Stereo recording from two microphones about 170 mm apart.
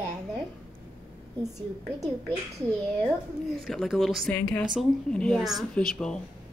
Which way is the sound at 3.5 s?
Centre (ahead or behind).